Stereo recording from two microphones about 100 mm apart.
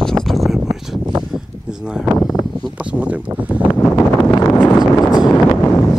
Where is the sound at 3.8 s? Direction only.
20° left (ahead or behind).